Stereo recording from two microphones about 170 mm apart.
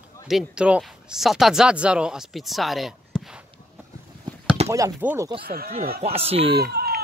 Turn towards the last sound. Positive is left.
turn(degrees=-65)  # may be behind; listen again after turning